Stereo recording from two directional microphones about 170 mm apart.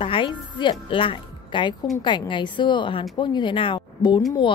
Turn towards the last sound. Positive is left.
turn(degrees=25)  # may be behind; listen again after turning